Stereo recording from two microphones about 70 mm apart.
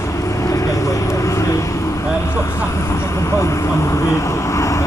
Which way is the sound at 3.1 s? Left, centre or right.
Left.